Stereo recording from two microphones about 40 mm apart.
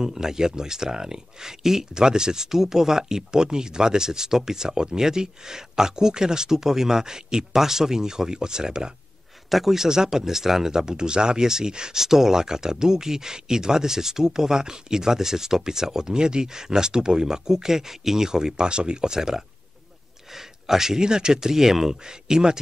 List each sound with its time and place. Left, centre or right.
0.0 s speech: centre
9.5 s speech: centre
9.8 s speech: centre